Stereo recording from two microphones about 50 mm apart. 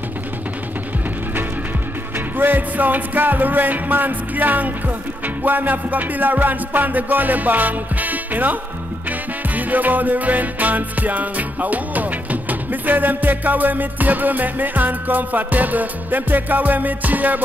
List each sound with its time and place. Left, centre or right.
2.1 s music: right
9.6 s music: right